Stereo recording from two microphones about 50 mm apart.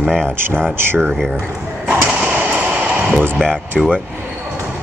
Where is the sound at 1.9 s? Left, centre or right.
Centre.